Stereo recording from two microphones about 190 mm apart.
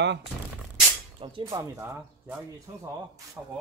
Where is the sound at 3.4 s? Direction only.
10° right (ahead or behind).